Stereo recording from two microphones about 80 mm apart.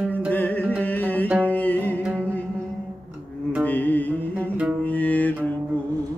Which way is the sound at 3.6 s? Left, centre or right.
Left.